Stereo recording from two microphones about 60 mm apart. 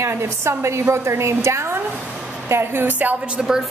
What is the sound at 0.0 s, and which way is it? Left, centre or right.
A woman's voice, right.